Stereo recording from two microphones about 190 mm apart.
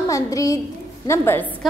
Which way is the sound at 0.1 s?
20° left (ahead or behind).